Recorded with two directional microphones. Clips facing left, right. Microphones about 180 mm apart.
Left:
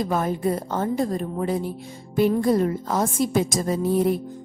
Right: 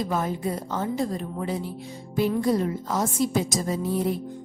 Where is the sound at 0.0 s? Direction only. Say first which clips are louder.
Left 3 dB; 55° left (ahead or behind).